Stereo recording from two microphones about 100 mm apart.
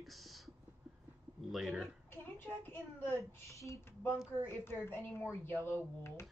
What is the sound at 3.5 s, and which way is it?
A woman's voice, 30° left (ahead or behind).